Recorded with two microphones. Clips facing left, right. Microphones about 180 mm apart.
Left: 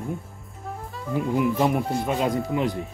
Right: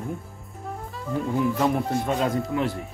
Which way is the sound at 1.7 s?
Centre (ahead or behind).